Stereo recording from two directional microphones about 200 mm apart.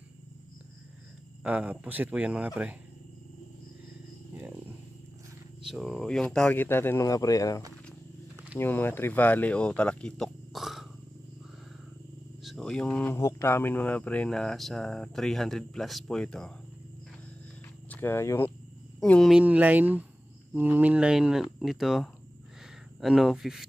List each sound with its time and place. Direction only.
1.4 s speech: 5° right (ahead or behind)
5.7 s speech: centre (ahead or behind)
12.4 s speech: centre (ahead or behind)
17.8 s speech: 10° left (ahead or behind)